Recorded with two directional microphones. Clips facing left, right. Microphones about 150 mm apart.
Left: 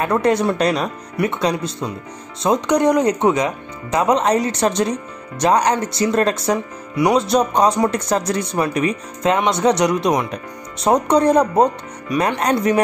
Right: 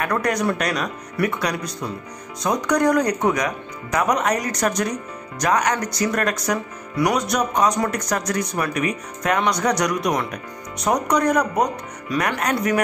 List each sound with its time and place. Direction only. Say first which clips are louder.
0.0 s speech: left 5 dB; 25° left (ahead or behind)